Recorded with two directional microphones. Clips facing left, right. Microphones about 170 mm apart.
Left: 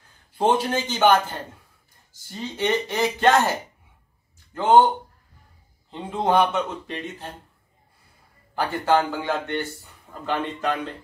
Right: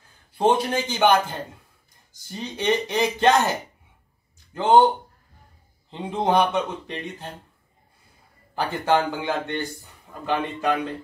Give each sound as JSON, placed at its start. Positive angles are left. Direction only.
{"t": 0.4, "sound": "speech", "side_deg": -10}
{"t": 2.1, "sound": "speech", "side_deg": -20}
{"t": 4.6, "sound": "speech", "side_deg": -20}
{"t": 5.9, "sound": "speech", "side_deg": -20}
{"t": 8.5, "sound": "speech", "side_deg": -20}